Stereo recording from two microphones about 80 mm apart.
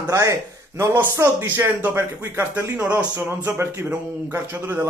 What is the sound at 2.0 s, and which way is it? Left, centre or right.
Speech, right.